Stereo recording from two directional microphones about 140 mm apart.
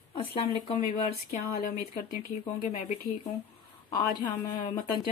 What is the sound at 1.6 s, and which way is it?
Speech, 90° left.